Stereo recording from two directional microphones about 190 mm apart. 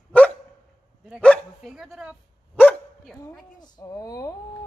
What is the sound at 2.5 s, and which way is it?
Dog, 10° left (ahead or behind).